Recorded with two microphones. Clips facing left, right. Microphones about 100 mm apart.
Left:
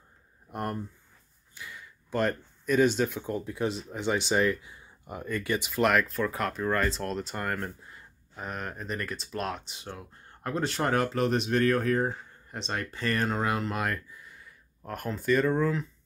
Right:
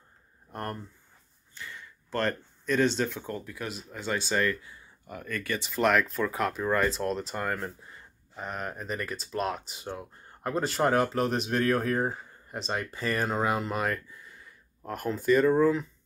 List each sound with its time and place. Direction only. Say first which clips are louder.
0.5 s speech: left 3 dB; 15° left (ahead or behind)
3.4 s speech: left 7 dB; 25° left (ahead or behind)
5.7 s speech: right 1 dB; centre (ahead or behind)